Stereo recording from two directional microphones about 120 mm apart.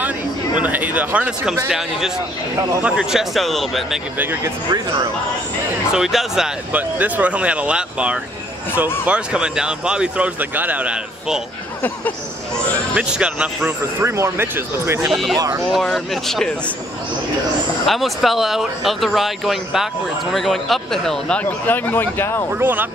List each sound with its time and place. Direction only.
0.6 s speech: 15° right (ahead or behind)
5.9 s speech: 5° right (ahead or behind)
12.9 s speech: 10° right (ahead or behind)
15.0 s speech: centre (ahead or behind)
15.3 s speech: 30° right (ahead or behind)
15.7 s speech: 5° left (ahead or behind)
17.8 s speech: centre (ahead or behind); by 22.5 s 20° left (ahead or behind)
22.5 s speech: 15° right (ahead or behind)